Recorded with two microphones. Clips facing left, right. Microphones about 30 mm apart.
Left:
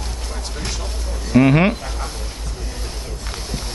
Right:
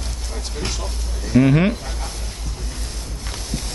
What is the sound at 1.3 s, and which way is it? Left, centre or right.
Speech, centre.